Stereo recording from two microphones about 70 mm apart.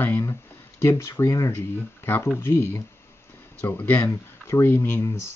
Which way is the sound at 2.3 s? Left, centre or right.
Left.